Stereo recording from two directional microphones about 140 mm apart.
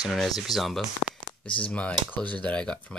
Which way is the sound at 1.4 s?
40° left (ahead or behind).